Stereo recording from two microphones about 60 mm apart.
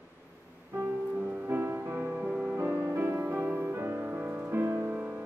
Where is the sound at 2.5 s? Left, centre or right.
Right.